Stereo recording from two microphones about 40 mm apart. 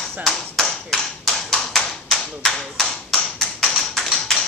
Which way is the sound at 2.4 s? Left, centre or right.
Centre.